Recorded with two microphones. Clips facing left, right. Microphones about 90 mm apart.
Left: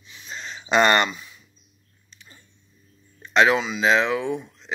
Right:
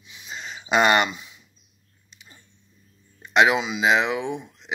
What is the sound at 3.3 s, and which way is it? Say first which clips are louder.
Speech: even; 15° right (ahead or behind).